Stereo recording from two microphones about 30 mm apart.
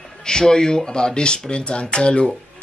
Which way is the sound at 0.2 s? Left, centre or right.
Left.